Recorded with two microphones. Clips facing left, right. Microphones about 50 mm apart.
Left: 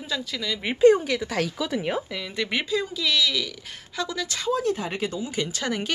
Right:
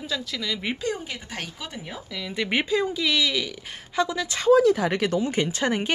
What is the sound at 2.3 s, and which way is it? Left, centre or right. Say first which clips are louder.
Speech: right 2 dB; right.